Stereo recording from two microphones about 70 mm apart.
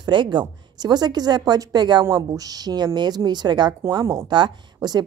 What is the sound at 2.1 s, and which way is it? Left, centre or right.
A woman's voice, right.